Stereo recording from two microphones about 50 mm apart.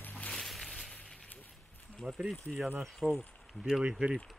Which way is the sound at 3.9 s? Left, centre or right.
Centre.